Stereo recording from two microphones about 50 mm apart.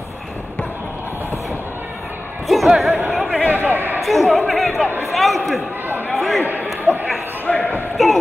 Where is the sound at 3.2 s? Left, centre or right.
Right.